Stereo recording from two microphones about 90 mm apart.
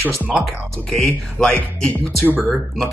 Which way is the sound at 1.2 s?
5° left (ahead or behind).